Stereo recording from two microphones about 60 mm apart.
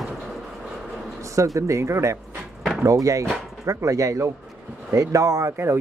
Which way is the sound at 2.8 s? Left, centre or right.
Right.